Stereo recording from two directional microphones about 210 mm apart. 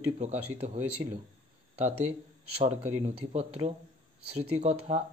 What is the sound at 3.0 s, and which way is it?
Speech, 30° right (ahead or behind).